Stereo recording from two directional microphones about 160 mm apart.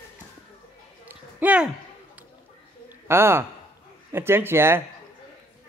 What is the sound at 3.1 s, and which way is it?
Speech, 15° right (ahead or behind).